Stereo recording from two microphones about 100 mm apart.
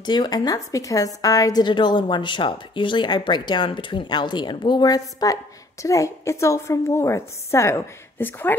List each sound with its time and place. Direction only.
0.0 s a woman's voice: 45° left (ahead or behind); by 8.5 s 20° left (ahead or behind)